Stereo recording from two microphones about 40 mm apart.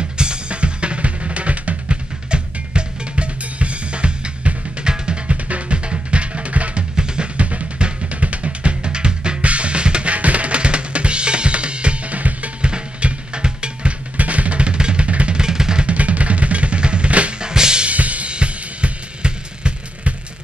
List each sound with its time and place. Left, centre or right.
0.2 s drum kit: right
7.0 s drum: right
7.4 s music: right
12.6 s drum: right
14.1 s music: right
15.3 s music: centre
15.9 s drum: right
17.4 s drum: centre
17.8 s drum kit: right